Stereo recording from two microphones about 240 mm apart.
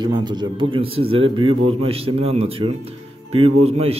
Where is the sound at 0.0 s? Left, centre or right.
Centre.